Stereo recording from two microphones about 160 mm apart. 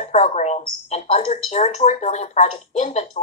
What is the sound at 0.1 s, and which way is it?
A woman's voice, 45° left (ahead or behind).